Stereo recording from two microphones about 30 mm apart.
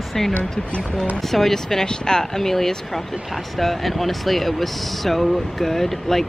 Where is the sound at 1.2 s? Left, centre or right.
Centre.